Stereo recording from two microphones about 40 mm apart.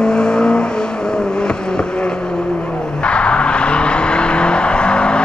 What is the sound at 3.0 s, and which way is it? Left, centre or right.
Vehicle, left.